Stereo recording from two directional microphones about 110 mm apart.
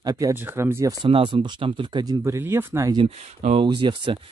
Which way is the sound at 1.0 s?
50° right (ahead or behind).